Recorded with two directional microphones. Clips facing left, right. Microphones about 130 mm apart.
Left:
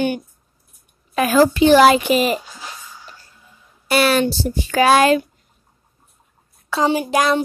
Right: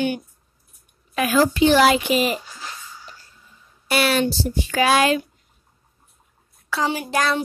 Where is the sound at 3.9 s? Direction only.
45° left (ahead or behind).